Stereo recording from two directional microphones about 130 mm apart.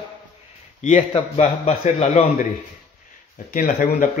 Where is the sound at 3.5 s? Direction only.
85° left.